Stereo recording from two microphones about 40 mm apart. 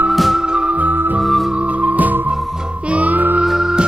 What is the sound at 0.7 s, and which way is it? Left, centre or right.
Music, right.